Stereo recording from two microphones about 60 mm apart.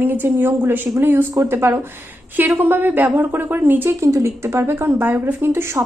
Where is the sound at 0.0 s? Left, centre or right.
Right.